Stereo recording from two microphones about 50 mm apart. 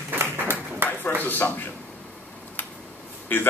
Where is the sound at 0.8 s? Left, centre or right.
Right.